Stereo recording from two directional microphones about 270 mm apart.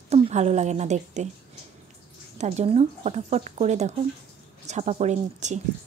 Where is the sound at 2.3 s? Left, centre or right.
Right.